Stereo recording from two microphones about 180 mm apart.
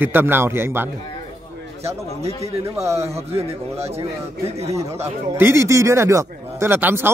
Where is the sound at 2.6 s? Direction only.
15° right (ahead or behind).